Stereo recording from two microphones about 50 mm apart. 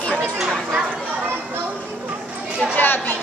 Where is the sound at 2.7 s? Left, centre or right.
Left.